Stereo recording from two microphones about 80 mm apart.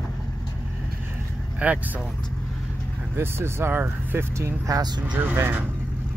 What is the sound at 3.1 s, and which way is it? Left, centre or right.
Speech, right.